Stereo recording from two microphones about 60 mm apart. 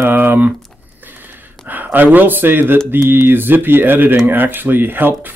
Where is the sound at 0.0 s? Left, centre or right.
Right.